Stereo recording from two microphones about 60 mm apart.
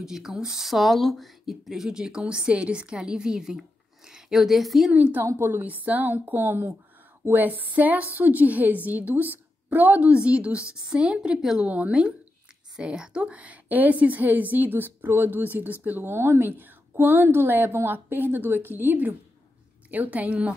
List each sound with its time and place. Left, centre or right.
0.0 s a woman's voice: centre
4.9 s a woman's voice: right